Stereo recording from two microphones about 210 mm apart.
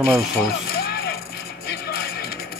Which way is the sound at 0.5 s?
45° left (ahead or behind).